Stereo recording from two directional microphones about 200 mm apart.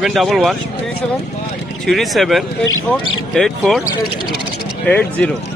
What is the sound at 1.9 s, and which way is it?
Speech, centre (ahead or behind).